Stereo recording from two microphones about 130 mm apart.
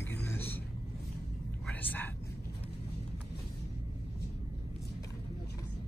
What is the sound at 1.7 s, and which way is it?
Whispering, 15° left (ahead or behind).